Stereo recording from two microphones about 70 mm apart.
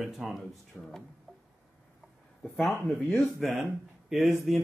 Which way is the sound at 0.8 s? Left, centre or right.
Left.